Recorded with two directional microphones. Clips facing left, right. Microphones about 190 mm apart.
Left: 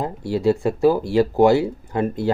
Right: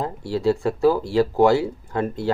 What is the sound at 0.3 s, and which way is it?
Speech, 20° left (ahead or behind).